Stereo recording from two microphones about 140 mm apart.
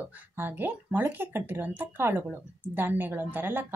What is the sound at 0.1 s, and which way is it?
A woman's voice, 15° right (ahead or behind).